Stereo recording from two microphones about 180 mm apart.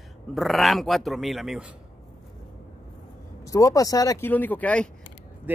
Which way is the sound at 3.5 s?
20° left (ahead or behind).